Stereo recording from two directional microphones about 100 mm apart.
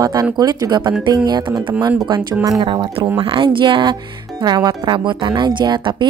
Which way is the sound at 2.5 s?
45° right (ahead or behind).